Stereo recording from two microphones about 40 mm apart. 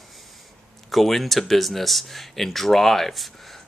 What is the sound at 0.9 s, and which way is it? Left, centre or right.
Speech, centre.